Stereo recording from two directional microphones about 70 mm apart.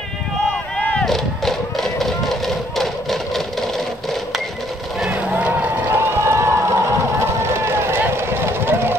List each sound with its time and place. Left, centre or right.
1.0 s a sound: centre
5.0 s cattle: centre
5.4 s run: right
6.2 s run: right